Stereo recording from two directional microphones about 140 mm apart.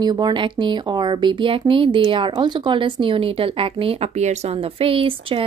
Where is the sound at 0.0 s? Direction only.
30° right (ahead or behind).